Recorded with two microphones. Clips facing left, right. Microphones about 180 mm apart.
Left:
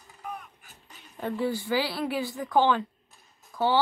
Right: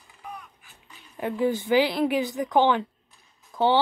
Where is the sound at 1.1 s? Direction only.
15° right (ahead or behind).